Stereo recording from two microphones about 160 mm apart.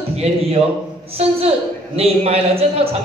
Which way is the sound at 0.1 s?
40° right (ahead or behind).